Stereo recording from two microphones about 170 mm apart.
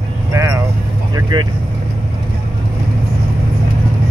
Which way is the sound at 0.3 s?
20° right (ahead or behind).